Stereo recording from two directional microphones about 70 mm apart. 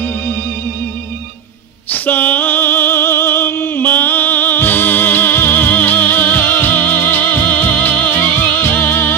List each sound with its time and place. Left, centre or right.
1.9 s music: left